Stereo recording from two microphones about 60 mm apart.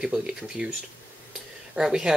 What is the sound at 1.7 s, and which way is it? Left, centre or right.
Speech, centre.